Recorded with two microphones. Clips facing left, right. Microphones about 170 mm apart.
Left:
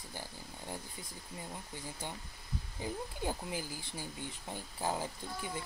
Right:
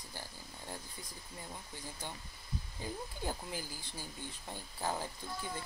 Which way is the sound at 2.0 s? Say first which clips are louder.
Left 2 dB; 15° left (ahead or behind).